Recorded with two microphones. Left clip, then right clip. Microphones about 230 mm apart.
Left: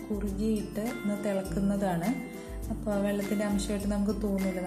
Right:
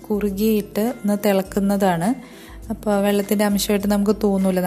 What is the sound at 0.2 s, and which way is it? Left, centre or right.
A woman's voice, right.